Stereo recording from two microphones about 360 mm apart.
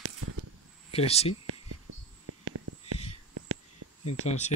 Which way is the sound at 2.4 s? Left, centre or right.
Right.